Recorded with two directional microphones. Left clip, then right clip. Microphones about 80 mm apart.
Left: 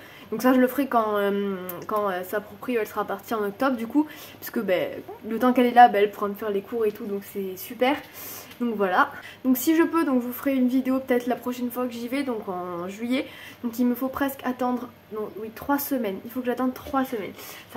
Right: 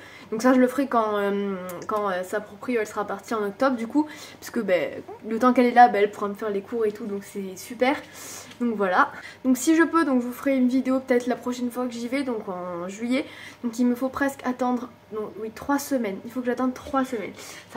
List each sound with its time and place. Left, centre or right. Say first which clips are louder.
0.4 s speech: right 1 dB; centre
2.6 s speech: even; left
8.5 s speech: right 1 dB; centre